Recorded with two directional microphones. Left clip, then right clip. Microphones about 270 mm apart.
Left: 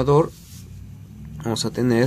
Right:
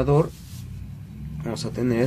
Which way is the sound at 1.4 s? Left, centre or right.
Left.